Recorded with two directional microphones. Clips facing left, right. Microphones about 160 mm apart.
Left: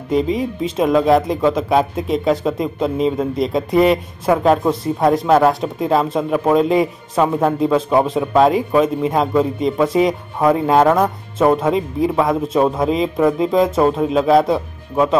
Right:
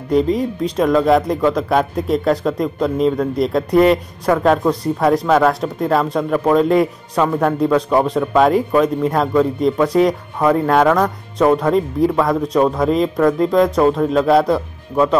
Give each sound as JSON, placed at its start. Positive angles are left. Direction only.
{"t": 0.1, "sound": "speech", "side_deg": 0}